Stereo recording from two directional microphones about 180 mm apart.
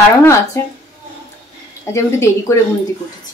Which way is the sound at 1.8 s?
15° left (ahead or behind).